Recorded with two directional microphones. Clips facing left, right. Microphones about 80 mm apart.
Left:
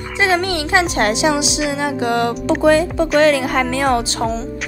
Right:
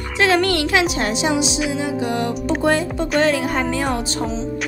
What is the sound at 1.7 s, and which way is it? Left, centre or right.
Music, left.